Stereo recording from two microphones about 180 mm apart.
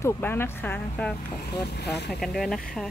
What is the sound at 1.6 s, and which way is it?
Speech, 65° left (ahead or behind).